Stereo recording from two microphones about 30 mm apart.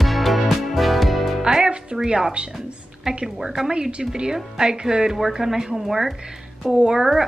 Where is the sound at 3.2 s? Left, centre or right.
Centre.